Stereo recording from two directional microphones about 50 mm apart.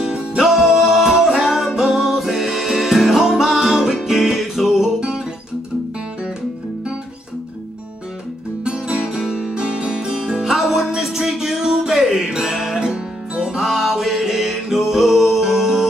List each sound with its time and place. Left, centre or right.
0.0 s music: centre
8.6 s music: centre